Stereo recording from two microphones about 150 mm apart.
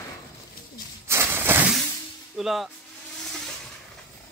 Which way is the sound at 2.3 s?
Centre (ahead or behind).